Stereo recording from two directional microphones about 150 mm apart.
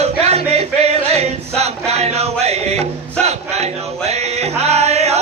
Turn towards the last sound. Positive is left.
turn(degrees=-45)  # may be behind; listen again after turning